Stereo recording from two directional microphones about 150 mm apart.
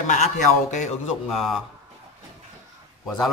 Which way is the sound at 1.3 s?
Centre (ahead or behind).